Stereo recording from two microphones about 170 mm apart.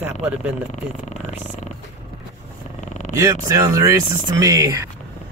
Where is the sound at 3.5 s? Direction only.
20° right (ahead or behind).